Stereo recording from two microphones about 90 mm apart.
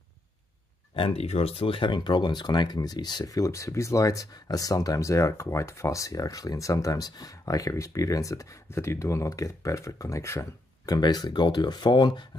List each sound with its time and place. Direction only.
0.9 s speech: 90° left; by 11.0 s 30° left (ahead or behind)
11.0 s speech: 50° left (ahead or behind)